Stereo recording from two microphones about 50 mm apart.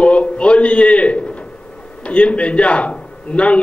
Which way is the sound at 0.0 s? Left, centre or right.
Left.